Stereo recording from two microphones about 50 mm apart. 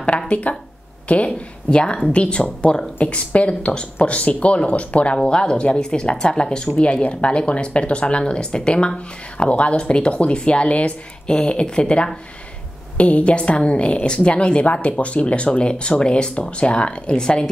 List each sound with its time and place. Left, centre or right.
0.3 s a woman's voice: left
6.7 s a woman's voice: left